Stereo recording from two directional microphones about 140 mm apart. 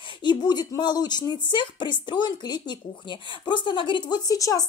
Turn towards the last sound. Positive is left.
turn(degrees=25)  # may be behind; listen again after turning